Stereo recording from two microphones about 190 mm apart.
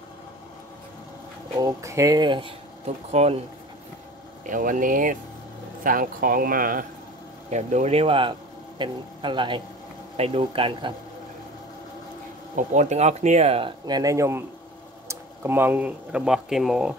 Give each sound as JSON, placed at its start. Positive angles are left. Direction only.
{"t": 1.6, "sound": "speech", "side_deg": -15}
{"t": 4.5, "sound": "speech", "side_deg": -45}
{"t": 7.4, "sound": "speech", "side_deg": -35}
{"t": 12.5, "sound": "speech", "side_deg": -40}